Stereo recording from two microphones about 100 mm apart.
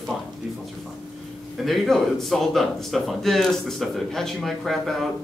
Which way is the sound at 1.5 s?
Centre (ahead or behind).